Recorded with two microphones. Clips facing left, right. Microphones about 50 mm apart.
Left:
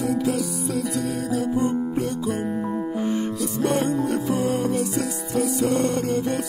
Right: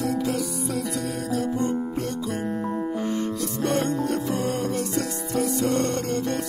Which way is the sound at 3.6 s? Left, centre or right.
Centre.